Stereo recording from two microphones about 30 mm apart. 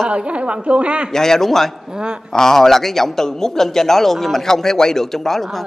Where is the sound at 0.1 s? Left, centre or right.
Right.